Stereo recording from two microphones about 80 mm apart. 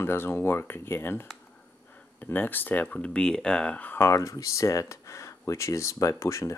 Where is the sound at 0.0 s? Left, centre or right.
Left.